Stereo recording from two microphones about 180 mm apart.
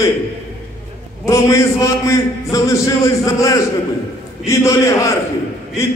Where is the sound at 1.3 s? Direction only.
15° left (ahead or behind).